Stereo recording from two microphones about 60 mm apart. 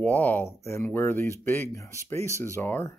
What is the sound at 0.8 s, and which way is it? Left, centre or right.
Speech, left.